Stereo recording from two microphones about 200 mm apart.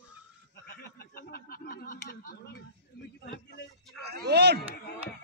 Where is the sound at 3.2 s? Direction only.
60° left (ahead or behind).